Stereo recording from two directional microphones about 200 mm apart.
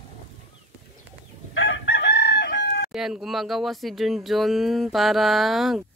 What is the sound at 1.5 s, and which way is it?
Chicken, 65° left (ahead or behind).